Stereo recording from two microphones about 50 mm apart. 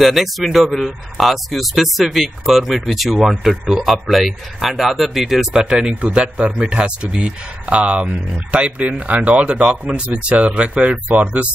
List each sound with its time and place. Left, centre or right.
0.0 s a man's voice: centre; by 11.4 s right